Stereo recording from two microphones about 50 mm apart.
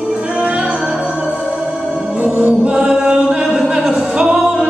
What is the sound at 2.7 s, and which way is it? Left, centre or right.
Singing, centre.